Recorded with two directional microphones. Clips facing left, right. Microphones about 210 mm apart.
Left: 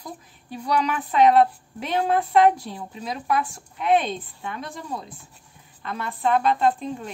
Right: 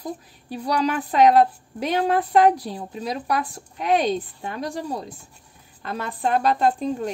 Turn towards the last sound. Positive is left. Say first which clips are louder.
# right 2 dB
turn(degrees=-40)  # may be behind; listen again after turning